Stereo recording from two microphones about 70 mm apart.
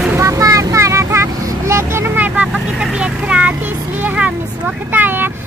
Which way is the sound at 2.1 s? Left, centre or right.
Right.